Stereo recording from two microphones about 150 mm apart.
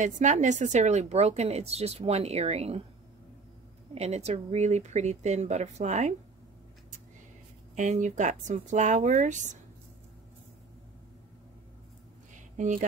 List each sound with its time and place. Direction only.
0.0 s speech: 55° right (ahead or behind)
3.9 s speech: 45° right (ahead or behind)
7.7 s speech: 55° right (ahead or behind)
12.4 s a sound: 55° right (ahead or behind)